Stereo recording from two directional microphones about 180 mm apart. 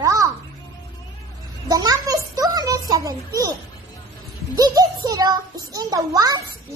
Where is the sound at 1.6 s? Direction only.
20° right (ahead or behind).